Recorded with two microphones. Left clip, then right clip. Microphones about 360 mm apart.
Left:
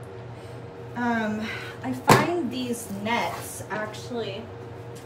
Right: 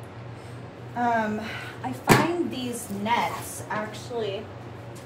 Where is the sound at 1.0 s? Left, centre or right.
Centre.